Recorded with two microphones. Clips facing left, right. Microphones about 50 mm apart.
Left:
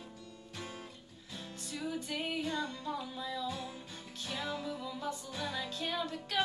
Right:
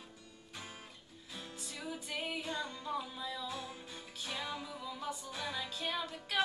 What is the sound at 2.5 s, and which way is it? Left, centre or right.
Music, centre.